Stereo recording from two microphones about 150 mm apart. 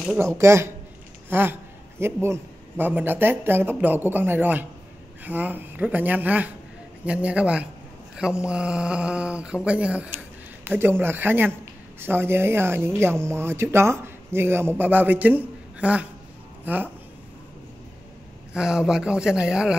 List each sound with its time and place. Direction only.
0.2 s speech: 20° right (ahead or behind)
18.5 s speech: 5° right (ahead or behind)